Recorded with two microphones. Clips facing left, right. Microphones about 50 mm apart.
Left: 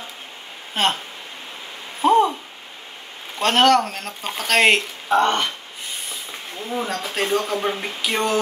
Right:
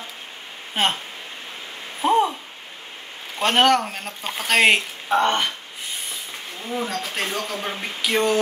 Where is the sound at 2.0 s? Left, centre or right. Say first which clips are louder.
Left 3 dB; centre.